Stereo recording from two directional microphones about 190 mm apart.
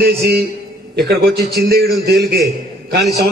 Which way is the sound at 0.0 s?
55° right (ahead or behind).